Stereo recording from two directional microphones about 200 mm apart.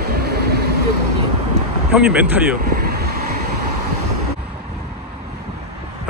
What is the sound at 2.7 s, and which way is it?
Vehicle, 50° right (ahead or behind).